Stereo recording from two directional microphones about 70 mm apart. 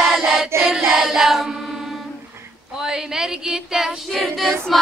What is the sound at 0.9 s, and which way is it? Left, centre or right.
Choir, centre.